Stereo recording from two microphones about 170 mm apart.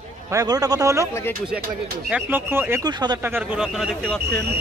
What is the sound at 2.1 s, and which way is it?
A man's voice, 10° right (ahead or behind).